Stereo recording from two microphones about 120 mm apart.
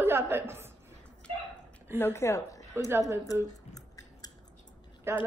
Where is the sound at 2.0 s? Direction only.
20° left (ahead or behind).